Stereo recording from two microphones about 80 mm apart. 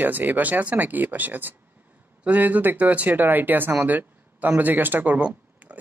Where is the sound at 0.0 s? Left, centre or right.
Right.